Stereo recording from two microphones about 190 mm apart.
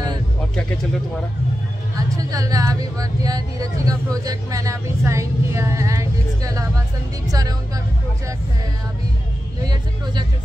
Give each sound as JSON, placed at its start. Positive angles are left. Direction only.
{"t": 2.0, "sound": "speech", "side_deg": -20}